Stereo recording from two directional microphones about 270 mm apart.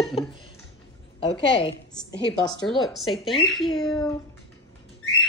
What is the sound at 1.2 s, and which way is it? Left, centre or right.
Speech, centre.